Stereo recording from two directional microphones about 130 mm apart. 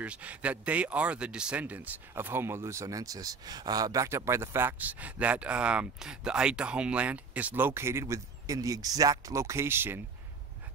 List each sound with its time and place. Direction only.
0.0 s speech: 10° right (ahead or behind)